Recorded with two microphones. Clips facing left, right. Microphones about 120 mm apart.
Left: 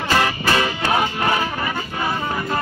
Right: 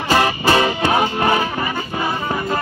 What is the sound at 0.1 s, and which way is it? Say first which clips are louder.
Music: right 4 dB; 25° right (ahead or behind).